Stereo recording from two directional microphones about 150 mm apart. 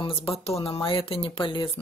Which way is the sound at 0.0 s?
35° left (ahead or behind).